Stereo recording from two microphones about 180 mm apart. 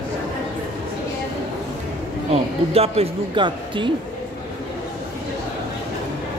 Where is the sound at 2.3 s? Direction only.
35° right (ahead or behind).